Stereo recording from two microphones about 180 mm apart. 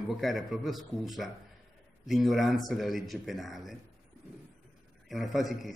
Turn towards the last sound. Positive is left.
turn(degrees=0)  # may be behind; listen again after turning